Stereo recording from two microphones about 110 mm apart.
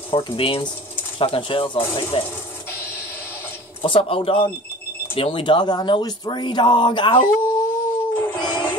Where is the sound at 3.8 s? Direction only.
55° left (ahead or behind).